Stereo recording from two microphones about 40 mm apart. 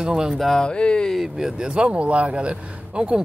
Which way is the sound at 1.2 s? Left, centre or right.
Centre.